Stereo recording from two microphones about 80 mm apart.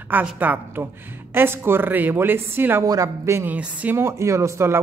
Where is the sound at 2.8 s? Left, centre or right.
Right.